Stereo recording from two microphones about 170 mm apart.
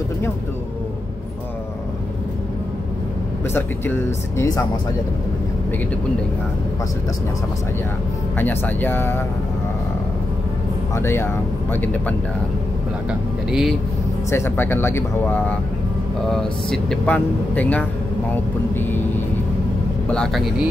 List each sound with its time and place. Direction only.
3.5 s speech: 15° left (ahead or behind)
8.4 s speech: 10° left (ahead or behind)
11.0 s speech: 15° left (ahead or behind)
13.5 s speech: centre (ahead or behind)
14.3 s speech: 15° left (ahead or behind)
20.1 s speech: 5° left (ahead or behind)